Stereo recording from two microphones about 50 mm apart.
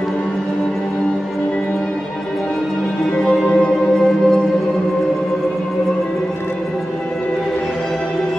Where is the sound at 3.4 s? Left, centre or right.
Centre.